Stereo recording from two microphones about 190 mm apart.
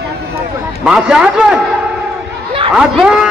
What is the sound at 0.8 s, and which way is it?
Speech, 5° right (ahead or behind).